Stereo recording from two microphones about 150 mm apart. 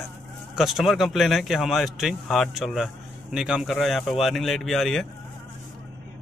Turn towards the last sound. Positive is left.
turn(degrees=0)  # may be behind; listen again after turning